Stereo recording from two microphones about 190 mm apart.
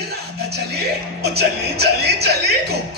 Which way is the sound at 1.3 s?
60° right (ahead or behind).